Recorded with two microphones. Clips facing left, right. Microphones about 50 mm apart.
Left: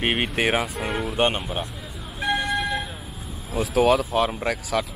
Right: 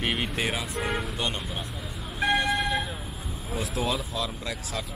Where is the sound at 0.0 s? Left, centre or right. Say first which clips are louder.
Left 5 dB; left.